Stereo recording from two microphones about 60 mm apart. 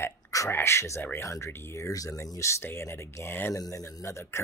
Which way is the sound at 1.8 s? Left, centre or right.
Left.